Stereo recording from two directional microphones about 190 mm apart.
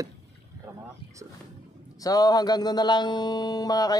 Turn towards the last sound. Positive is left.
turn(degrees=20)  # may be behind; listen again after turning